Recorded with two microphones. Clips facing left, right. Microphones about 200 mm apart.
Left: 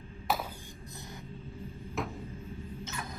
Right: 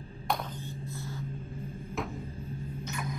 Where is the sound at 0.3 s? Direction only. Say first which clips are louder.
Even; 5° left (ahead or behind).